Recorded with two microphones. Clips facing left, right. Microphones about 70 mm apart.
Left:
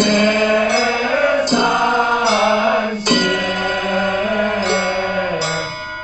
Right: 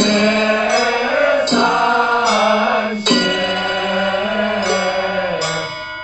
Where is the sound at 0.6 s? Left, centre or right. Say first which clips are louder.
Right 1 dB; right.